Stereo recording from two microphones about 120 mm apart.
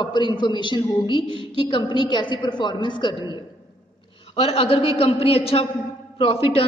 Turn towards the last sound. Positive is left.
turn(degrees=50)  # may be behind; listen again after turning